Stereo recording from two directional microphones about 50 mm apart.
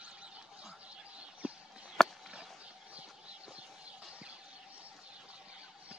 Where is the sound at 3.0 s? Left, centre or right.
Right.